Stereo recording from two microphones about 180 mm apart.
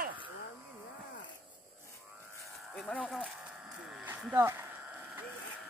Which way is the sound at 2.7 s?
5° left (ahead or behind).